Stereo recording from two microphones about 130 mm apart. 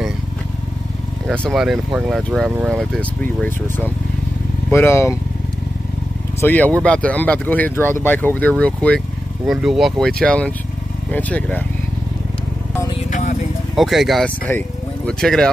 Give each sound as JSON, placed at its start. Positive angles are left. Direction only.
{"t": 1.2, "sound": "speech", "side_deg": 5}
{"t": 4.6, "sound": "speech", "side_deg": 20}
{"t": 6.4, "sound": "speech", "side_deg": 10}
{"t": 9.5, "sound": "speech", "side_deg": 0}
{"t": 13.1, "sound": "vehicle", "side_deg": 70}
{"t": 13.7, "sound": "speech", "side_deg": 0}